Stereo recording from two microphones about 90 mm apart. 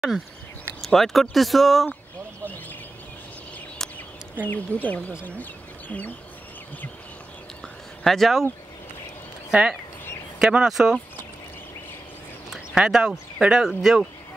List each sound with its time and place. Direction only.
0.1 s speech: 50° left (ahead or behind)
0.7 s speech: centre (ahead or behind)
4.5 s speech: 20° left (ahead or behind)
7.6 s a sound: 5° left (ahead or behind)
9.5 s speech: 10° right (ahead or behind)
12.4 s speech: 5° right (ahead or behind)